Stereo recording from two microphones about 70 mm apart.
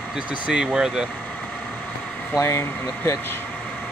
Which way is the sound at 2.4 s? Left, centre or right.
Left.